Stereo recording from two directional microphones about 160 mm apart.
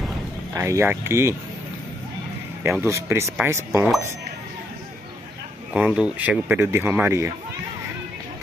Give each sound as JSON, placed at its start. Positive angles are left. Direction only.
{"t": 0.6, "sound": "speech", "side_deg": -15}
{"t": 2.6, "sound": "speech", "side_deg": -15}
{"t": 5.7, "sound": "speech", "side_deg": -5}